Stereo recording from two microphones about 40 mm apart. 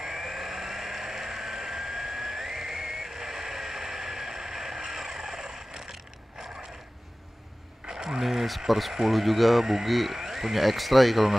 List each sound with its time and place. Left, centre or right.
0.0 s vehicle: centre
7.9 s a sound: centre
8.2 s speech: centre